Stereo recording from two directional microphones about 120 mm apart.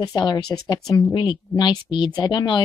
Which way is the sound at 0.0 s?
35° left (ahead or behind).